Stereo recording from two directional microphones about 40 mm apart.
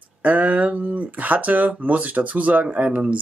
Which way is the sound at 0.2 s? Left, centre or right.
Right.